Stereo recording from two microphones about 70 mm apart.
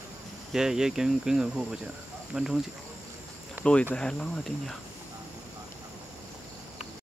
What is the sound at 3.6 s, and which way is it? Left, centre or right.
Speech, right.